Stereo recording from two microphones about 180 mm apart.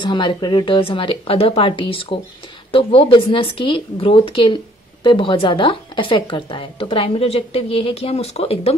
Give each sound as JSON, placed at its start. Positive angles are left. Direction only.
{"t": 0.0, "sound": "a woman's voice", "side_deg": 25}